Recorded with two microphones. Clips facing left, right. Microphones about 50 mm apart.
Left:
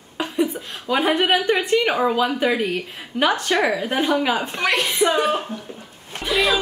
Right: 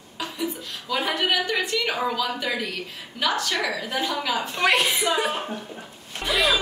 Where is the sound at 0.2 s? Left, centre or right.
Left.